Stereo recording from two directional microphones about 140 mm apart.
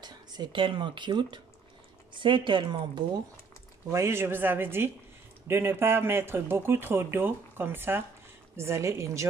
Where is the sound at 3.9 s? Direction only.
20° right (ahead or behind).